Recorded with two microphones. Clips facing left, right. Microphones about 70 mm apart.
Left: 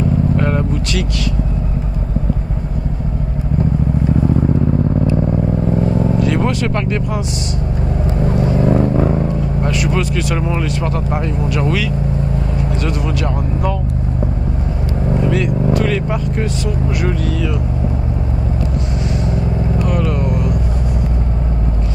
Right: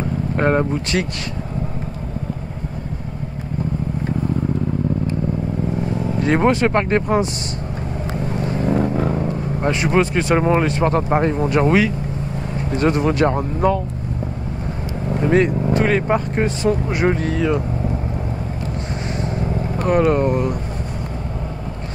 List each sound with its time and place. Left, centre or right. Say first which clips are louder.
0.4 s speech: right 1 dB; right
6.1 s speech: even; right
8.2 s vehicle: left 7 dB; left
9.6 s speech: right 3 dB; right
15.2 s speech: right 4 dB; right
20.1 s speech: right 2 dB; right